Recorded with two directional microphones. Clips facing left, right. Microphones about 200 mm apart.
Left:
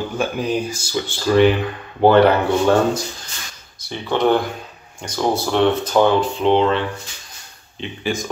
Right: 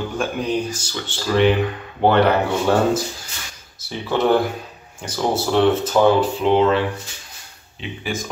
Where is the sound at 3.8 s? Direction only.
5° right (ahead or behind).